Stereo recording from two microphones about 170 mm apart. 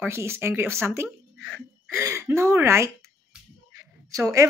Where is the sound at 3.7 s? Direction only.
20° right (ahead or behind).